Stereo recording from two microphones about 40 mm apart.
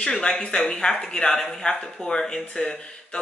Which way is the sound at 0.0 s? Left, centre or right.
Left.